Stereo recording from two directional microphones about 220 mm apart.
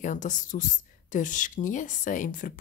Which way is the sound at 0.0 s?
35° left (ahead or behind).